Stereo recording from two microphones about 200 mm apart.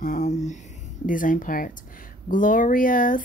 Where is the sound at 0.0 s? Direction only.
40° left (ahead or behind).